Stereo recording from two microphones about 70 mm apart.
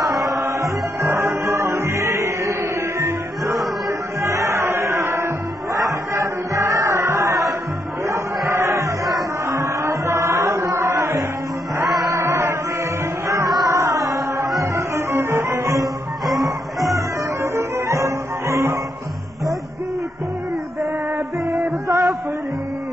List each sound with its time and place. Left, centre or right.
0.6 s music: right
4.2 s chant: right
12.0 s music: right
13.3 s music: right
15.1 s music: right
16.3 s music: centre
16.8 s music: right
21.5 s music: right